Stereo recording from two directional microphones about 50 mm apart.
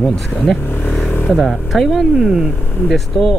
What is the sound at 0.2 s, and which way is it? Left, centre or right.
Speech, centre.